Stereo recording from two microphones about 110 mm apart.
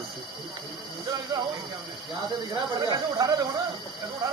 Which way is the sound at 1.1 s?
45° right (ahead or behind).